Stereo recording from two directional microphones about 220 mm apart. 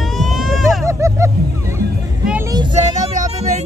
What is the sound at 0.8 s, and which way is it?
Vehicle, 15° right (ahead or behind).